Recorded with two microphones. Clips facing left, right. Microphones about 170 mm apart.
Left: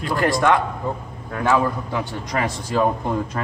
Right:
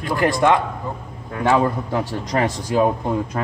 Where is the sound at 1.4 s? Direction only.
30° right (ahead or behind).